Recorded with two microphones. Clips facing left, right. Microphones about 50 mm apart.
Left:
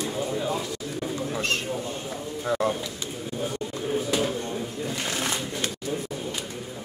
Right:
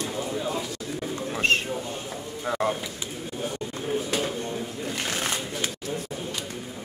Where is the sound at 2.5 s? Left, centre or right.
Right.